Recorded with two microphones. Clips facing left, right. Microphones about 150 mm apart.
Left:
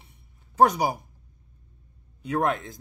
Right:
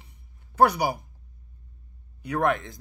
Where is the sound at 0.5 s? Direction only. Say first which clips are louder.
Left 1 dB; 75° right (ahead or behind).